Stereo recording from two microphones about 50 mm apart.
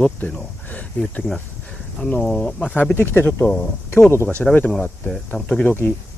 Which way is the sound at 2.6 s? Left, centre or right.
Left.